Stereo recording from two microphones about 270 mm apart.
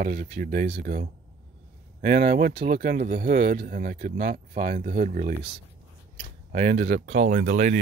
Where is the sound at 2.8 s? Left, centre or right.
Right.